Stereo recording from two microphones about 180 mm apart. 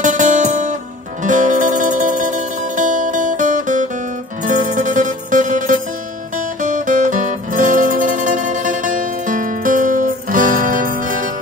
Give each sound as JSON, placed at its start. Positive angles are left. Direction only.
{"t": 0.0, "sound": "music", "side_deg": -45}
{"t": 6.3, "sound": "guitar", "side_deg": -45}